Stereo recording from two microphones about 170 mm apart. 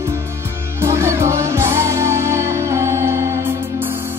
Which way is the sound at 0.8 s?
15° right (ahead or behind).